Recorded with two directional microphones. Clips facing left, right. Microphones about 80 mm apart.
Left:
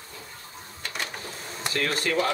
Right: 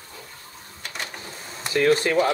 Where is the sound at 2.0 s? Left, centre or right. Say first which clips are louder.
Right 5 dB; centre.